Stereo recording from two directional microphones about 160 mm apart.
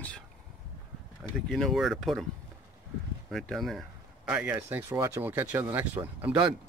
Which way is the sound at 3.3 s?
Centre (ahead or behind).